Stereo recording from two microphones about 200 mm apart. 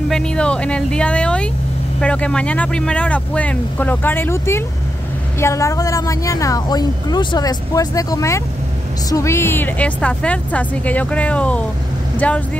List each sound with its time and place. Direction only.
0.1 s a woman's voice: 5° left (ahead or behind)